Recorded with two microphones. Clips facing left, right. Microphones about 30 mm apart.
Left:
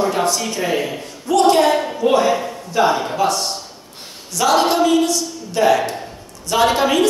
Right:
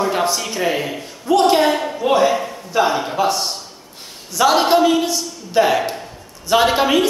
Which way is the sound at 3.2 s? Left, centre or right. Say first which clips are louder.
Even; centre.